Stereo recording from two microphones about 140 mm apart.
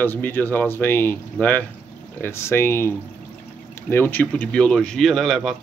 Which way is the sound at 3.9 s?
15° left (ahead or behind).